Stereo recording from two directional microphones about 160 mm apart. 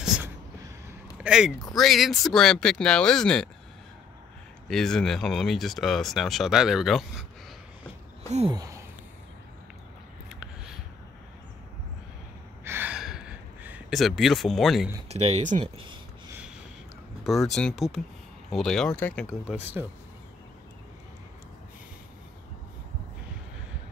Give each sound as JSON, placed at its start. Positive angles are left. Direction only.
{"t": 1.2, "sound": "speech", "side_deg": -5}
{"t": 4.6, "sound": "speech", "side_deg": 0}
{"t": 8.5, "sound": "speech", "side_deg": -20}
{"t": 12.6, "sound": "a sound", "side_deg": -10}
{"t": 15.0, "sound": "speech", "side_deg": -40}
{"t": 17.2, "sound": "a sound", "side_deg": 0}
{"t": 17.6, "sound": "speech", "side_deg": 0}
{"t": 19.4, "sound": "speech", "side_deg": -10}